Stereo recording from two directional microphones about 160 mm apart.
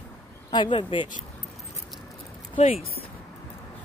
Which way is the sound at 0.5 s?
30° left (ahead or behind).